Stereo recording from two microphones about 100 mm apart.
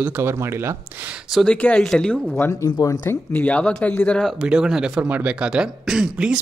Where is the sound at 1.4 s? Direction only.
10° left (ahead or behind).